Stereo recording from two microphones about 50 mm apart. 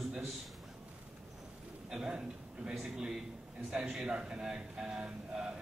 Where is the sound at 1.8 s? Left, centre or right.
Centre.